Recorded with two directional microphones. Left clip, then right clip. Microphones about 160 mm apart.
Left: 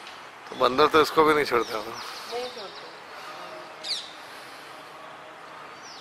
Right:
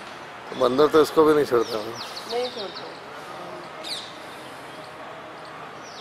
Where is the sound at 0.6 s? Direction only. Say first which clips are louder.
Right 2 dB; 30° left (ahead or behind).